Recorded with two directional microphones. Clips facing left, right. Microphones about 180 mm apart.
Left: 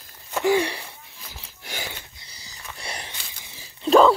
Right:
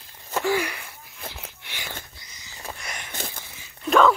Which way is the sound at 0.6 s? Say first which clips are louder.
Left 4 dB; 30° left (ahead or behind).